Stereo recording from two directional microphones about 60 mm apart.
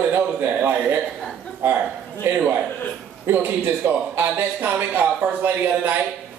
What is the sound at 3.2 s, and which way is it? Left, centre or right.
A man's voice, right.